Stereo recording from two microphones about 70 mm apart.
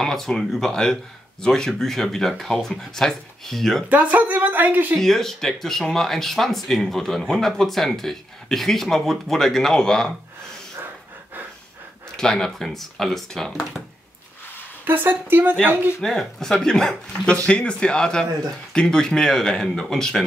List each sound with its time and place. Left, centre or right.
0.0 s speech: centre
3.9 s a woman's voice: right
4.9 s speech: centre
12.2 s speech: centre
14.9 s a woman's voice: right
16.0 s speech: centre